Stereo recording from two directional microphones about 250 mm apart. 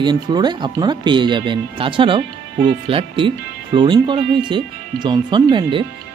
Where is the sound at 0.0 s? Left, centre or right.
Centre.